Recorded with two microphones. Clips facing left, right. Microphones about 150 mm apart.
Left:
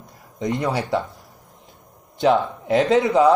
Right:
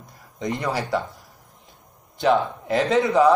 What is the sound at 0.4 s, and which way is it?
Speech, 20° left (ahead or behind).